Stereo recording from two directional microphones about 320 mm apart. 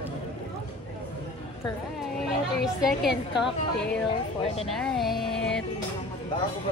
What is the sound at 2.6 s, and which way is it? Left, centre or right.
A woman's voice, centre.